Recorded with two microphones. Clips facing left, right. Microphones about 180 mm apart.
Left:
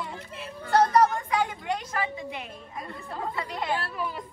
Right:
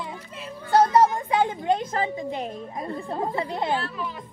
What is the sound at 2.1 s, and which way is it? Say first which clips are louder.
Speech: right 7 dB; 40° right (ahead or behind).